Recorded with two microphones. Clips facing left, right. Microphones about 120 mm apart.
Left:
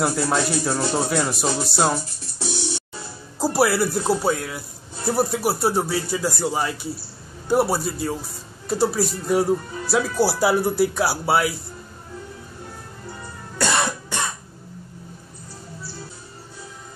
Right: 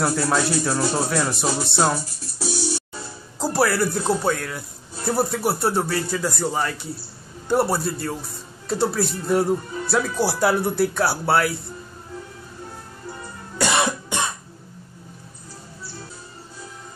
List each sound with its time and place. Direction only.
0.0 s speech: 5° left (ahead or behind)
3.3 s a man's voice: 10° left (ahead or behind)
13.6 s cough: 15° right (ahead or behind)